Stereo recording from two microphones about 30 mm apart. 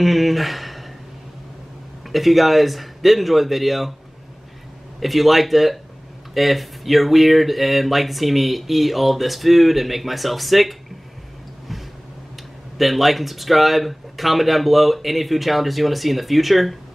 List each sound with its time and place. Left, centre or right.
0.0 s a sound: centre
2.1 s speech: centre
5.0 s speech: centre
12.7 s speech: centre